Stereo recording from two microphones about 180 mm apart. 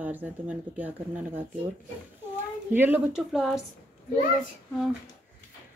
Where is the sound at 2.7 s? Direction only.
10° right (ahead or behind).